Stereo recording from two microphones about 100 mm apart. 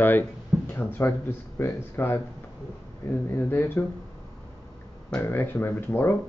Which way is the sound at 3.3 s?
20° left (ahead or behind).